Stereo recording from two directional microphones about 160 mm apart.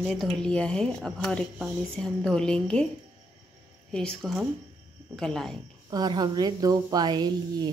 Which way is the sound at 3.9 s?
5° left (ahead or behind).